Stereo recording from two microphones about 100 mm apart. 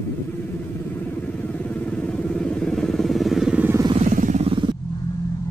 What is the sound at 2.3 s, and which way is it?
Vehicle, 5° left (ahead or behind).